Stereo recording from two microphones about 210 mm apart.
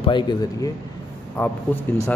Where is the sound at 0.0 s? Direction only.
20° left (ahead or behind).